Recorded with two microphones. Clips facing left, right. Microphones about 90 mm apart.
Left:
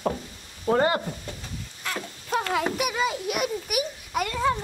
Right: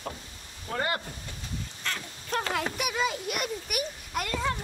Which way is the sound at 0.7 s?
55° left (ahead or behind).